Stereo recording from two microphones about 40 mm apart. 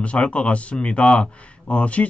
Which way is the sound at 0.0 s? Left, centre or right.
Left.